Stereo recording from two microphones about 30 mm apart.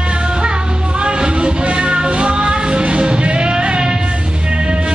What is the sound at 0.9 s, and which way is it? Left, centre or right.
Music, right.